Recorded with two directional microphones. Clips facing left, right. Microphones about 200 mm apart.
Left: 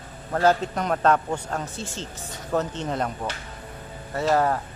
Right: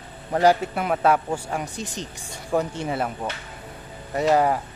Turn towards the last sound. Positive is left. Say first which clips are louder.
# right 2 dB
turn(degrees=-15)  # may be behind; listen again after turning